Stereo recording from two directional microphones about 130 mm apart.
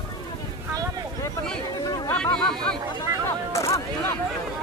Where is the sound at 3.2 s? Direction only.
25° left (ahead or behind).